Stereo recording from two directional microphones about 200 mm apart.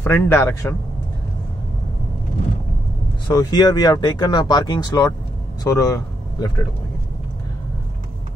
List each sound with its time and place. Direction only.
0.0 s a man's voice: 10° left (ahead or behind)
3.3 s speech: 20° left (ahead or behind)